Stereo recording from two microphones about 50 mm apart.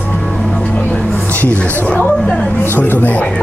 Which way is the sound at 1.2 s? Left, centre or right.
Left.